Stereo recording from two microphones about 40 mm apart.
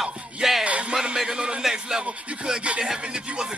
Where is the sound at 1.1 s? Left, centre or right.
Centre.